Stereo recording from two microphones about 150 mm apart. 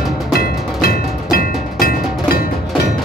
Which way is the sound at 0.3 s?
90° left.